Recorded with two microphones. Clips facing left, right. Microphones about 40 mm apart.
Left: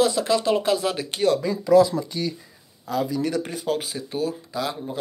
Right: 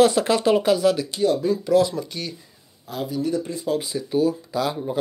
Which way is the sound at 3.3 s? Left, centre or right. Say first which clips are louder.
Right 1 dB; left.